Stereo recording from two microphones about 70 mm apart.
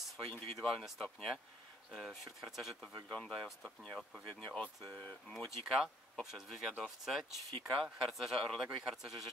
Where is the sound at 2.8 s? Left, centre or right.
Centre.